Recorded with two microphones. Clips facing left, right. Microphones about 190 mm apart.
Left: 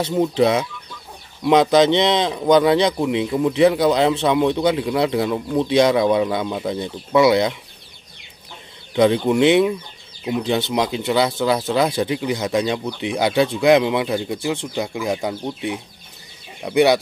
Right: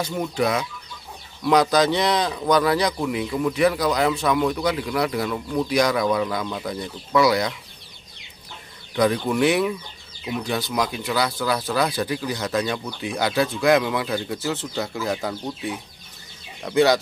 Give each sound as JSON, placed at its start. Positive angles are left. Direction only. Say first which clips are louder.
{"t": 0.0, "sound": "speech", "louder": "left 6 dB", "side_deg": 25}
{"t": 8.9, "sound": "speech", "louder": "left 5 dB", "side_deg": 20}